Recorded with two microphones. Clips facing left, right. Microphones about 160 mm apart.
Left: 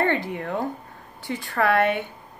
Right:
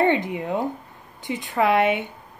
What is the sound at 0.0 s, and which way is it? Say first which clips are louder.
A woman's voice: right 3 dB; 15° right (ahead or behind).